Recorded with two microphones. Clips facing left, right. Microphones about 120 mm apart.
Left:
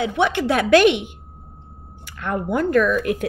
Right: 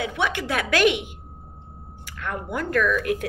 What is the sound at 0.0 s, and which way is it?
A woman's voice, 25° left (ahead or behind).